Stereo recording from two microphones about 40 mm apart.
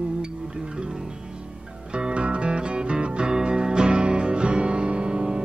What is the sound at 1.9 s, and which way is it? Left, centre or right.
Music, right.